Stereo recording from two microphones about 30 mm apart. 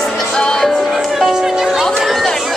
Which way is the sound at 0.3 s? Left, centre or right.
Left.